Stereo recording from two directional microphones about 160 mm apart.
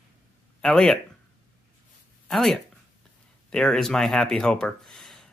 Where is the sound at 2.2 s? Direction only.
Centre (ahead or behind).